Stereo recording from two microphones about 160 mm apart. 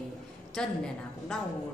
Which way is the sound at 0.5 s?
5° left (ahead or behind).